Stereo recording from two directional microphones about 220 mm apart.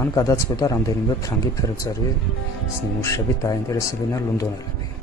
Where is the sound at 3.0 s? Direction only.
15° left (ahead or behind).